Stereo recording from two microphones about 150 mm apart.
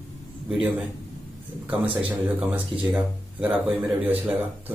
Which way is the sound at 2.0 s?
10° right (ahead or behind).